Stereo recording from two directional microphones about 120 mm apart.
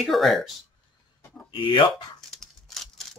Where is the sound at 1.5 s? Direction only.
40° left (ahead or behind).